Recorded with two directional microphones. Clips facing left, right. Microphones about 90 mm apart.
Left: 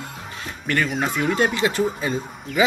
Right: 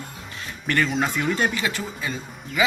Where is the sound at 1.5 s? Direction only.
25° left (ahead or behind).